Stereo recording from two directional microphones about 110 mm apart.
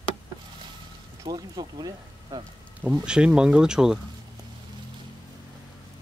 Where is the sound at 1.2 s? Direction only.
35° right (ahead or behind).